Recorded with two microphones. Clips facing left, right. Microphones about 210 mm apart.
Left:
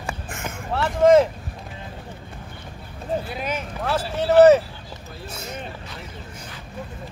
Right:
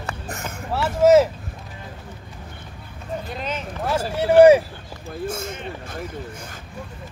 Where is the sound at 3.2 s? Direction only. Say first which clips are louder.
Left 1 dB; 10° left (ahead or behind).